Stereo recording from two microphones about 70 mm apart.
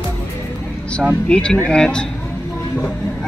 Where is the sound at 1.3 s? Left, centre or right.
Centre.